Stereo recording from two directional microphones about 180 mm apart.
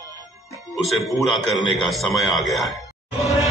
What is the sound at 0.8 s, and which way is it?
A man's voice, centre (ahead or behind).